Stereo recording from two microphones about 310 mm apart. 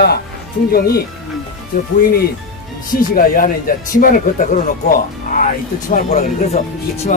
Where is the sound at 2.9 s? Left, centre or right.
Left.